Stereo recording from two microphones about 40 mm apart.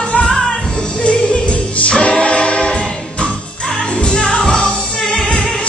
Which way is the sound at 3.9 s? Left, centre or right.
Left.